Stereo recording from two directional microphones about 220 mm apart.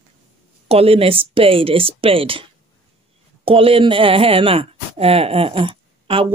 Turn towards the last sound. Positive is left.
turn(degrees=-25)  # may be behind; listen again after turning